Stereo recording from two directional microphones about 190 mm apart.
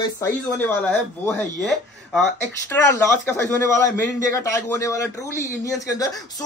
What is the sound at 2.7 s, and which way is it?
A man's voice, 10° left (ahead or behind).